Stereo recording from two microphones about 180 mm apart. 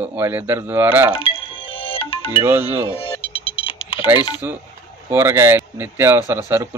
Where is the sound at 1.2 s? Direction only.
30° left (ahead or behind).